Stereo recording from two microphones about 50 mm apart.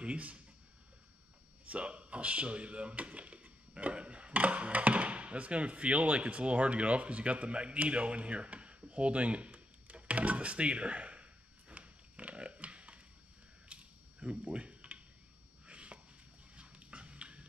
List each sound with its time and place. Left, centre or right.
0.0 s speech: right
1.7 s speech: right
11.7 s a sound: right
15.6 s chopping: right
16.5 s dog: right